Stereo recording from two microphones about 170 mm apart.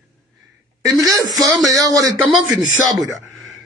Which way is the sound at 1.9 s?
20° right (ahead or behind).